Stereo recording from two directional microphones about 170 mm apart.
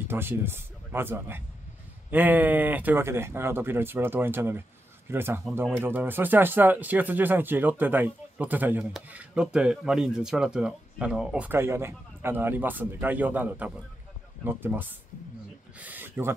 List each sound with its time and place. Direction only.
0.1 s speech: 15° right (ahead or behind)